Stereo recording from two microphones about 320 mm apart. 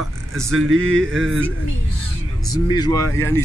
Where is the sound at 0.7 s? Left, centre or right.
Right.